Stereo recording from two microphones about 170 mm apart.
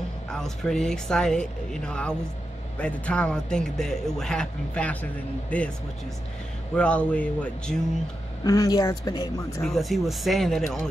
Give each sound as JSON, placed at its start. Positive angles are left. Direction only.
{"t": 0.3, "sound": "a man's voice", "side_deg": 0}
{"t": 6.7, "sound": "speech", "side_deg": 5}
{"t": 8.5, "sound": "speech", "side_deg": 20}
{"t": 9.6, "sound": "a man's voice", "side_deg": 0}